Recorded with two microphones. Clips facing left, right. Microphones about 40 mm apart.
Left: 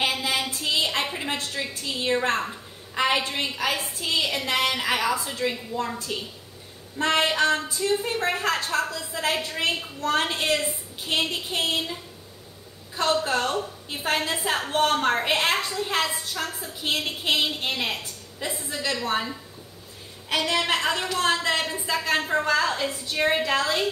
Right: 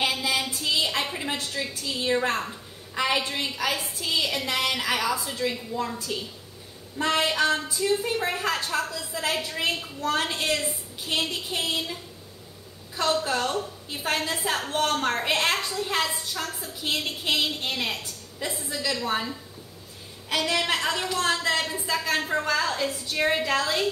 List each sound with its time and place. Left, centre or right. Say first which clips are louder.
0.1 s a sound: even; centre
3.5 s a woman's voice: left 1 dB; centre
7.0 s a woman's voice: left 2 dB; centre